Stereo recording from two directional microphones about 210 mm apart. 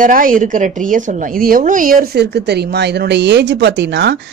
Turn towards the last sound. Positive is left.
turn(degrees=-55)  # may be behind; listen again after turning